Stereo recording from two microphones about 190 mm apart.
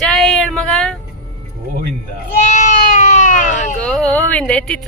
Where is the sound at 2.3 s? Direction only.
40° left (ahead or behind).